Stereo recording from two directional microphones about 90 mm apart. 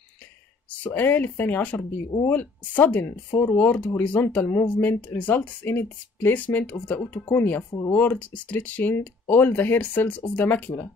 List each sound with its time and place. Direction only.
0.8 s speech: 20° left (ahead or behind)